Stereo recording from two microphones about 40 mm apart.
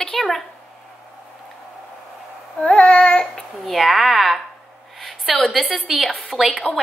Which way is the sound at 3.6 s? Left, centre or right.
Centre.